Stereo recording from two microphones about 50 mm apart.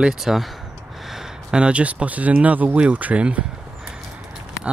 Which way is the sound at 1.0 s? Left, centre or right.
Centre.